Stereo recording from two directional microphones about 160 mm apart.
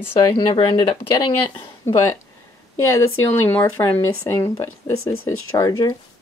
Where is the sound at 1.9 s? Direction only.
20° left (ahead or behind).